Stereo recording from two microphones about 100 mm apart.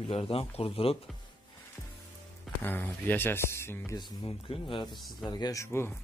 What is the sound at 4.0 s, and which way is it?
Speech, 55° left (ahead or behind).